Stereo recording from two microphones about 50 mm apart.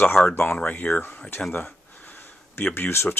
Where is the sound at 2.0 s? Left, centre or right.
Left.